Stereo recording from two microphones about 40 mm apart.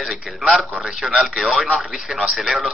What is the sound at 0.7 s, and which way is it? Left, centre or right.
Speech, centre.